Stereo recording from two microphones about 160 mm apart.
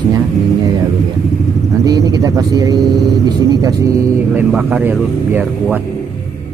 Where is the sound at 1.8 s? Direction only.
25° right (ahead or behind).